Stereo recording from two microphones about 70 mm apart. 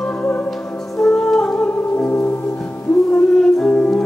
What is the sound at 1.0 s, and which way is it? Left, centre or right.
Music, centre.